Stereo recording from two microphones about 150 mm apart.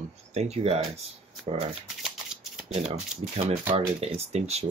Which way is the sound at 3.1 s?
5° right (ahead or behind).